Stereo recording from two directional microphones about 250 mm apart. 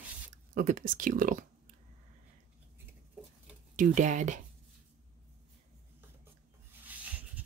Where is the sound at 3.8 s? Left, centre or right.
Right.